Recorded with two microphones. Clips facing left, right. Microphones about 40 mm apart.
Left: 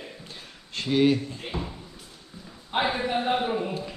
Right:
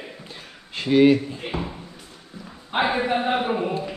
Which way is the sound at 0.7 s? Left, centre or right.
Centre.